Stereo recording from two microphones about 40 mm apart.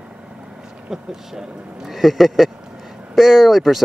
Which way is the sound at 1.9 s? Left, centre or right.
Centre.